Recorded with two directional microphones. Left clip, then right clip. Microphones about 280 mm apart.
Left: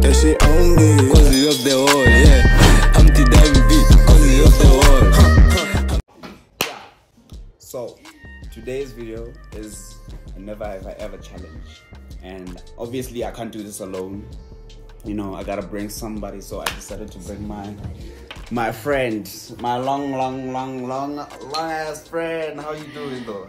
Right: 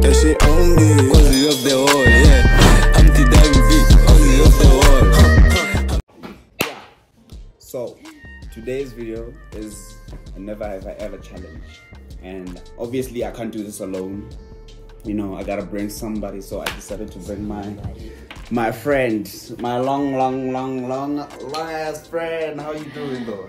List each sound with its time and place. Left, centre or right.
0.0 s music: centre
7.7 s music: centre
9.5 s music: centre
10.4 s speech: centre
12.3 s speech: centre
15.0 s speech: centre
16.8 s speech: centre
18.3 s speech: centre